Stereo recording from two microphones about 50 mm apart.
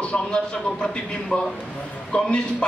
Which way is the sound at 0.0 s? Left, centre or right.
Left.